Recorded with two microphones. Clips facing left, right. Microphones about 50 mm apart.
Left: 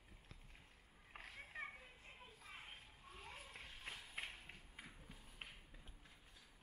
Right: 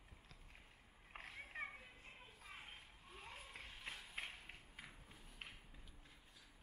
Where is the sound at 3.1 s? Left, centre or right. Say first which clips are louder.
Right 1 dB; centre.